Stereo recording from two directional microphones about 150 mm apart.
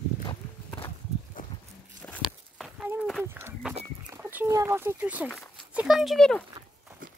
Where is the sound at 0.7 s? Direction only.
10° left (ahead or behind).